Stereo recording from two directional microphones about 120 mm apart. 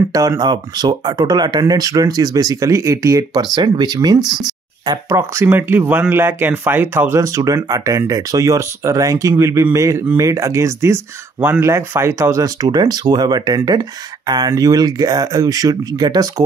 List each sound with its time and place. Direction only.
0.1 s speech: 30° right (ahead or behind)